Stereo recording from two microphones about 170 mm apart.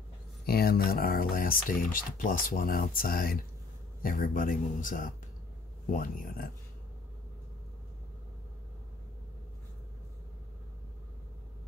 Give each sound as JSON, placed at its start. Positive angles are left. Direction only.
{"t": 0.5, "sound": "speech", "side_deg": 65}